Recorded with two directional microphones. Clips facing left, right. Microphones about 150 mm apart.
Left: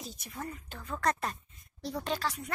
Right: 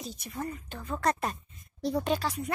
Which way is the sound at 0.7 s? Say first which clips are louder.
Right 2 dB; 10° right (ahead or behind).